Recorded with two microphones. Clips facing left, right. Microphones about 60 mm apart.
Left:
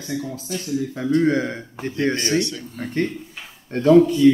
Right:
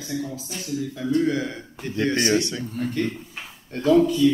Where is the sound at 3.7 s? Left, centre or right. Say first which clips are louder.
Left 4 dB; left.